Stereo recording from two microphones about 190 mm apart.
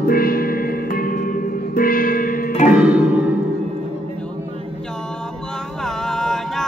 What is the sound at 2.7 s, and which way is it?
Music, 5° right (ahead or behind).